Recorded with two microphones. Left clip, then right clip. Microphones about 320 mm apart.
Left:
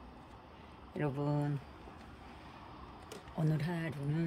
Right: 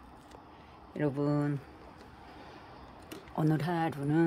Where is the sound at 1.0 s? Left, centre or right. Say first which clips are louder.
Right 5 dB; centre.